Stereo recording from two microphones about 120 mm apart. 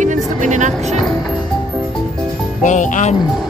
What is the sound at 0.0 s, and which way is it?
Music, 90° right.